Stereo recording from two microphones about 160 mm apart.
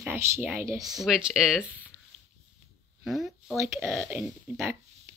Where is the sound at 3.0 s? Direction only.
Centre (ahead or behind).